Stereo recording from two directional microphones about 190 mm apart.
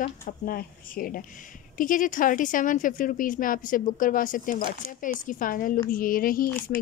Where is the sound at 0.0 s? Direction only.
50° left (ahead or behind).